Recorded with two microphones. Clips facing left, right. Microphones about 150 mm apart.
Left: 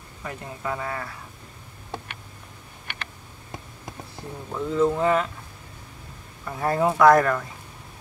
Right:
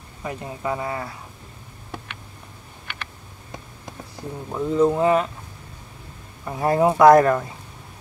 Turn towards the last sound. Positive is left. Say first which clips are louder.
# right 4 dB
turn(degrees=-25)  # may be behind; listen again after turning